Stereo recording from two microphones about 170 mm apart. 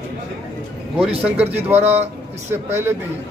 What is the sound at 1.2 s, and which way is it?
Speech, 10° right (ahead or behind).